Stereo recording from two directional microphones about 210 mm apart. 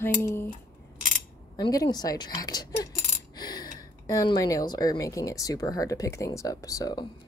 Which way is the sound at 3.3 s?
20° left (ahead or behind).